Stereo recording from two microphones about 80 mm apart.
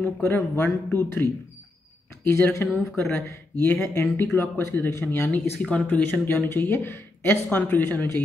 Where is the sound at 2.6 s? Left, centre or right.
Left.